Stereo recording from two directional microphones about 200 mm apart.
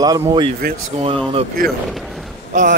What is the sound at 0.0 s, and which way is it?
Speech, 20° right (ahead or behind).